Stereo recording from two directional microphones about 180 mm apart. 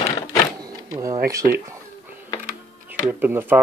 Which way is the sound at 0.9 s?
20° right (ahead or behind).